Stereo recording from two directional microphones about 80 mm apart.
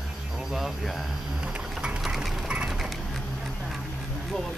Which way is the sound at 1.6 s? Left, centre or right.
Centre.